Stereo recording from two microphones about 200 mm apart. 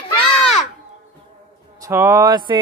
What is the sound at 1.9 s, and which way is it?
Music, 15° right (ahead or behind).